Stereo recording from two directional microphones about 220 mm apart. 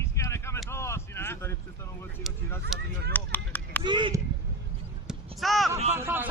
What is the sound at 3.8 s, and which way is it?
Speech, 20° right (ahead or behind).